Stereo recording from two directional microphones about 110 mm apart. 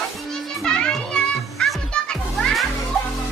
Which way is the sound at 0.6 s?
5° left (ahead or behind).